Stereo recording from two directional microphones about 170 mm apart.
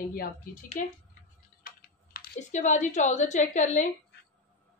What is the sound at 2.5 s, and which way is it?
A woman's voice, 45° left (ahead or behind).